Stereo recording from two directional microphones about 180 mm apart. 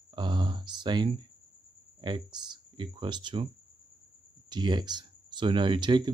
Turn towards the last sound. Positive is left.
turn(degrees=-25)  # may be behind; listen again after turning